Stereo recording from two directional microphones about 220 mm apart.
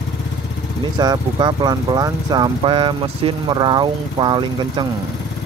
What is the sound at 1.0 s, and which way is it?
Speech, 20° right (ahead or behind).